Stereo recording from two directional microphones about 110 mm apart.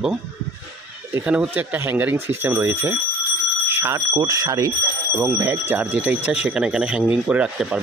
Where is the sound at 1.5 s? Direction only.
15° right (ahead or behind).